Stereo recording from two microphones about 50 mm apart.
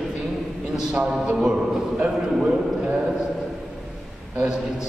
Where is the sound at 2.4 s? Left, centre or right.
Centre.